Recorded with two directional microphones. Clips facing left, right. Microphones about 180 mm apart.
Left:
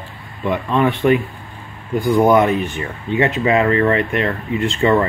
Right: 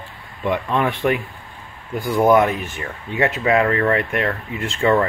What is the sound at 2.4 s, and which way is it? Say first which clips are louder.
Speech: left 4 dB; 5° right (ahead or behind).